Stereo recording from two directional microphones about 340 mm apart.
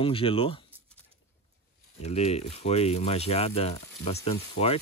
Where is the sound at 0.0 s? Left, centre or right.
Centre.